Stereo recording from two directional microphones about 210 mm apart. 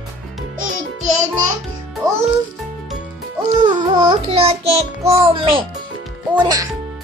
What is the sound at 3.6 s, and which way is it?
Music, 20° right (ahead or behind).